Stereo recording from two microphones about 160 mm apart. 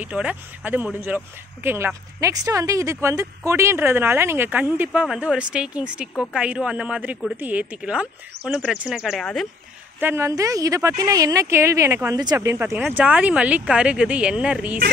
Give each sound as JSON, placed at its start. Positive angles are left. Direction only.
{"t": 0.0, "sound": "speech", "side_deg": -10}
{"t": 9.9, "sound": "a woman's voice", "side_deg": -15}